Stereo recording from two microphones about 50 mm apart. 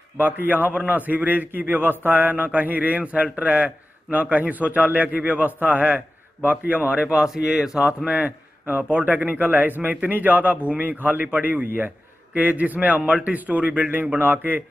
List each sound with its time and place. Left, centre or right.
0.2 s a man's voice: right
7.2 s speech: centre
8.9 s a man's voice: right
14.1 s a man's voice: right